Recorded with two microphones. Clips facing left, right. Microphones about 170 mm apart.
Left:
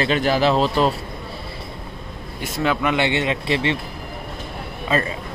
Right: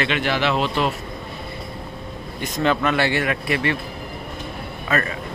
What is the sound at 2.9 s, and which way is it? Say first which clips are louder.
Speech: left 1 dB; 20° left (ahead or behind).